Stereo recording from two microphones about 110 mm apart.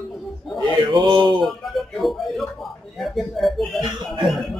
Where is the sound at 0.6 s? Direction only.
40° right (ahead or behind).